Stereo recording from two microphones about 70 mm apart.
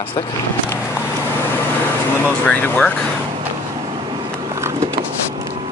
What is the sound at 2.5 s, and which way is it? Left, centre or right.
Speech, left.